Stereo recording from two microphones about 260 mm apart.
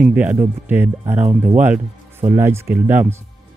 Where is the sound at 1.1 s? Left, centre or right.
Right.